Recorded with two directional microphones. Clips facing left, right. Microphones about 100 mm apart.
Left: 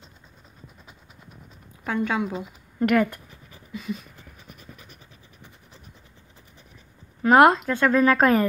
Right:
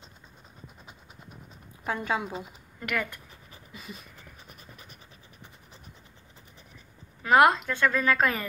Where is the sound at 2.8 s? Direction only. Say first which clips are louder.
Left 11 dB; 45° left (ahead or behind).